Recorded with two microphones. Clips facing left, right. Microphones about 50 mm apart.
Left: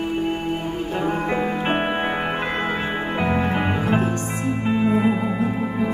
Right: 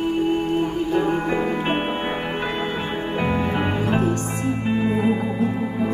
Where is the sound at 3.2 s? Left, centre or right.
Left.